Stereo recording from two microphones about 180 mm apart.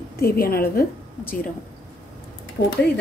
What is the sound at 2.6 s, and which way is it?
Speech, 55° left (ahead or behind).